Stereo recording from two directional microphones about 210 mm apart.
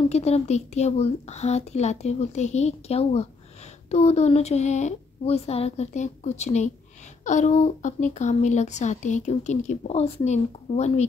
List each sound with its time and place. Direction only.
0.1 s speech: 30° left (ahead or behind)